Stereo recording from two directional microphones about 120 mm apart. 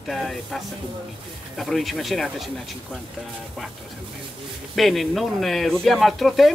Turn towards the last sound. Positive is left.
turn(degrees=0)  # may be behind; listen again after turning